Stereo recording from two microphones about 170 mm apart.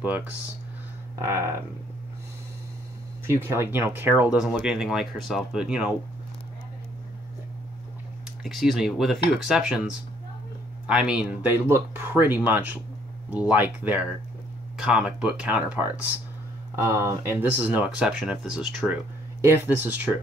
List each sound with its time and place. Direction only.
0.0 s speech: 10° right (ahead or behind)
3.3 s speech: 15° right (ahead or behind)
8.5 s speech: centre (ahead or behind)
10.9 s speech: 5° right (ahead or behind)
17.0 s speech: 15° right (ahead or behind)